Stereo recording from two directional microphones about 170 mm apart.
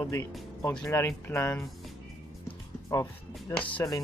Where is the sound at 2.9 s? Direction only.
20° left (ahead or behind).